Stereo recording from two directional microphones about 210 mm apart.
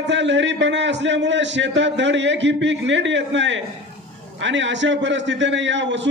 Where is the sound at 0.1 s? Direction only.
60° right (ahead or behind).